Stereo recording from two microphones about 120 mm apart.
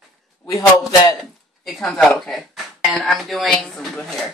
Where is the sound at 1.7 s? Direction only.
5° left (ahead or behind).